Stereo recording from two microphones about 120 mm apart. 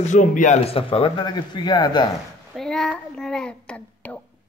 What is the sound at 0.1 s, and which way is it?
Speech, 90° left.